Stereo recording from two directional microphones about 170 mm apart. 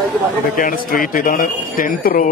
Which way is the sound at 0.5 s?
55° left (ahead or behind).